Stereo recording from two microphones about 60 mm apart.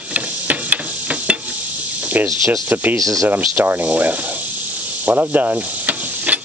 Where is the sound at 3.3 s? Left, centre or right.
Right.